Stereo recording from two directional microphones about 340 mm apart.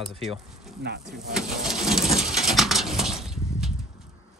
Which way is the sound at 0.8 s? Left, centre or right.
Right.